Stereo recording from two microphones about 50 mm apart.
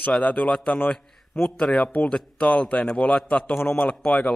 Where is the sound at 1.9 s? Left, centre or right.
Left.